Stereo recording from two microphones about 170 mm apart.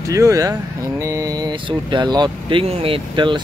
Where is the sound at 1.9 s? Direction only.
25° right (ahead or behind).